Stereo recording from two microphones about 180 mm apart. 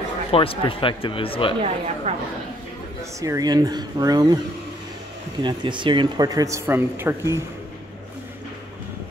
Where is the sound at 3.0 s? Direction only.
15° right (ahead or behind).